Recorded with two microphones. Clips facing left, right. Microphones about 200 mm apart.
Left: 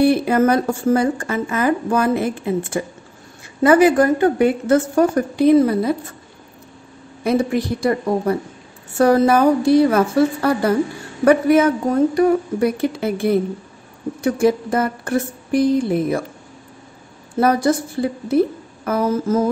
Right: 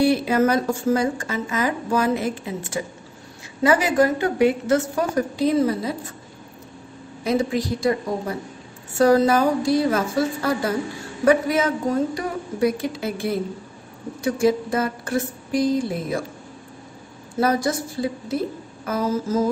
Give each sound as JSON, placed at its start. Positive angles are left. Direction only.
{"t": 0.0, "sound": "a woman's voice", "side_deg": 55}
{"t": 7.2, "sound": "a woman's voice", "side_deg": 60}
{"t": 17.4, "sound": "a woman's voice", "side_deg": 55}